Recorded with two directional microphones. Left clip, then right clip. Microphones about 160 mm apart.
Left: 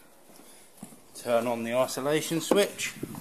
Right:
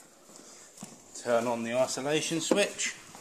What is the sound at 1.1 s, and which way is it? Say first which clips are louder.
Speech: left 1 dB; 20° left (ahead or behind).